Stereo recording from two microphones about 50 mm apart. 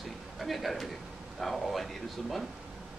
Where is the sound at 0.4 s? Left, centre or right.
Centre.